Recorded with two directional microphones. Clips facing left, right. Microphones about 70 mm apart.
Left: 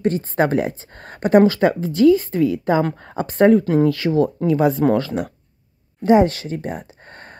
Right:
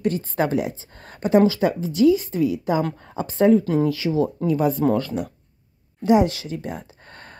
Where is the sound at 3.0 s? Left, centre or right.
Left.